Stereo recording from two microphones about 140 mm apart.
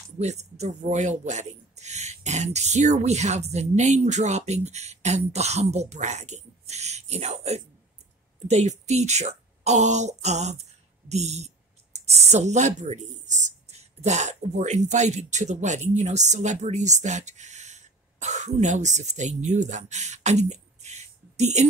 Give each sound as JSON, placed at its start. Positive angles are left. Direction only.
{"t": 0.2, "sound": "speech", "side_deg": -55}